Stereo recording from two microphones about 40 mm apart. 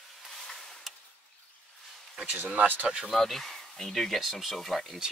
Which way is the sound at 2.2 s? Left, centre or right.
Right.